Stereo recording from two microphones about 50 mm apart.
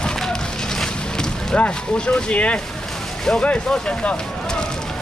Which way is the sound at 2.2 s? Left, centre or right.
Left.